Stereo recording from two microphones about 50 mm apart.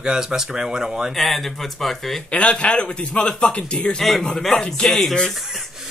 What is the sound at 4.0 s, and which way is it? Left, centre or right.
Speech, centre.